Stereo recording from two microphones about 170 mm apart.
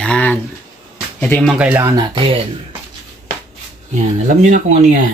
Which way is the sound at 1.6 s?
15° right (ahead or behind).